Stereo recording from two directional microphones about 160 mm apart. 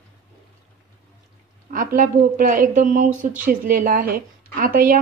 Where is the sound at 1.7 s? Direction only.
60° right (ahead or behind).